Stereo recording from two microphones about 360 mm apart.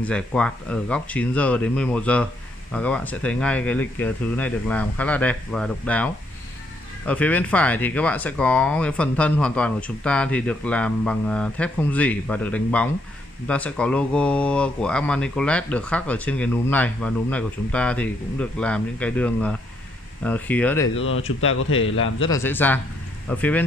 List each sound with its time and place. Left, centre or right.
0.0 s speech: centre
20.9 s a man's voice: left
22.3 s speech: centre